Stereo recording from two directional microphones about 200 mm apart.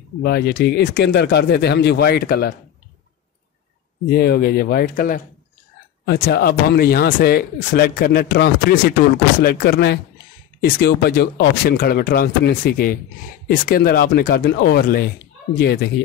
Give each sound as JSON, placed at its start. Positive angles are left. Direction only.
{"t": 0.2, "sound": "speech", "side_deg": 55}
{"t": 4.1, "sound": "speech", "side_deg": 50}